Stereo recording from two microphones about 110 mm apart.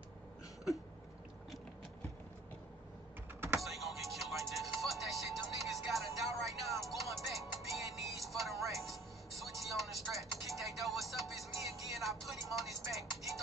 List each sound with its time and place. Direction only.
3.3 s power windows: 20° right (ahead or behind)
3.6 s music: centre (ahead or behind)